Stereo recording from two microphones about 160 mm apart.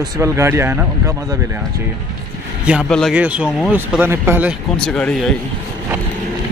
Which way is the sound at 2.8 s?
5° left (ahead or behind).